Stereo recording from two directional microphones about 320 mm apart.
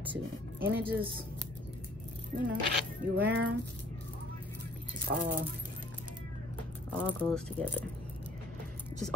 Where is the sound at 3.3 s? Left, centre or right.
Right.